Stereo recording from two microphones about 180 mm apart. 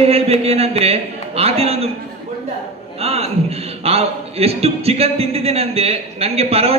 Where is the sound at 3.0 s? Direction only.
35° right (ahead or behind).